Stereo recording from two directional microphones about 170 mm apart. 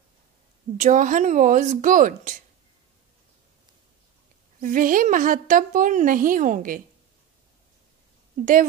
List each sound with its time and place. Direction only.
0.7 s a woman's voice: 45° right (ahead or behind)
4.6 s a woman's voice: 50° right (ahead or behind)